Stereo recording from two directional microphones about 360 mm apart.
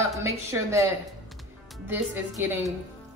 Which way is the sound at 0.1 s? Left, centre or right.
Centre.